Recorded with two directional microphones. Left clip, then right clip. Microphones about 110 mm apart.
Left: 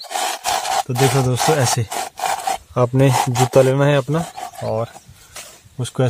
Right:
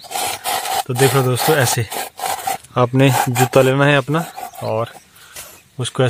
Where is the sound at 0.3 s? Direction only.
40° left (ahead or behind).